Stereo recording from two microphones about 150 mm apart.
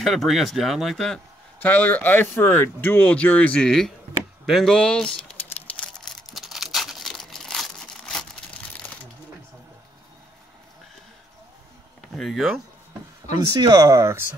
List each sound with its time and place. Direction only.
0.0 s speech: centre (ahead or behind)
4.5 s crumpling: centre (ahead or behind)
12.2 s speech: centre (ahead or behind)
13.5 s speech: 25° right (ahead or behind)